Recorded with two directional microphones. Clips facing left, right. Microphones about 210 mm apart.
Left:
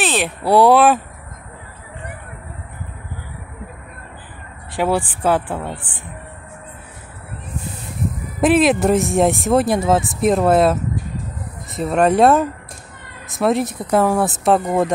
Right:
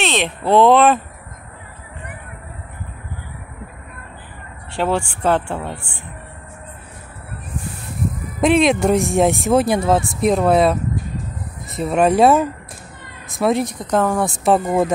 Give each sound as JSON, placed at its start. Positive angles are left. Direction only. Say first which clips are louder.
{"t": 0.5, "sound": "speech", "louder": "even", "side_deg": 10}
{"t": 4.7, "sound": "speech", "louder": "left 1 dB", "side_deg": 15}
{"t": 5.2, "sound": "speech", "louder": "even", "side_deg": 5}
{"t": 5.7, "sound": "speech", "louder": "even", "side_deg": 20}
{"t": 8.4, "sound": "speech", "louder": "even", "side_deg": 5}